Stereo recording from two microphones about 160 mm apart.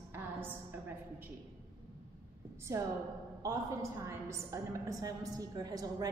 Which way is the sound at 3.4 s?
20° right (ahead or behind).